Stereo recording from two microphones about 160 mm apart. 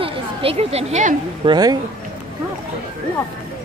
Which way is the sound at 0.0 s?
35° right (ahead or behind).